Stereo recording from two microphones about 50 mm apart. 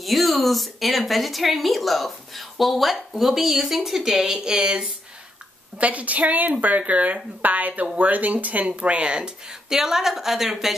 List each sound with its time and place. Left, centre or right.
0.0 s a woman's voice: centre
5.8 s a woman's voice: right; by 10.8 s centre